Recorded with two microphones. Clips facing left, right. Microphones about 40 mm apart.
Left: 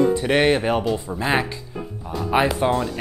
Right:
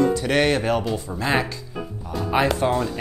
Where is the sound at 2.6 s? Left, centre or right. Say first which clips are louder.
Left 1 dB; centre.